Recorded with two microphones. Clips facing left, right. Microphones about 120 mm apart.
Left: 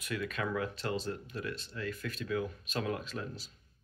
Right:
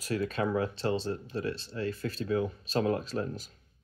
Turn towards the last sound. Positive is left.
turn(degrees=-45)  # may be behind; listen again after turning